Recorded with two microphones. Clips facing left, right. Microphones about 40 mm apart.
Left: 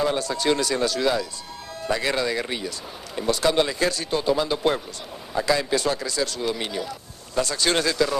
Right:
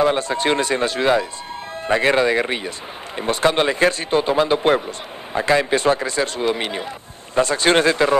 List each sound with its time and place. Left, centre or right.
0.0 s speech: right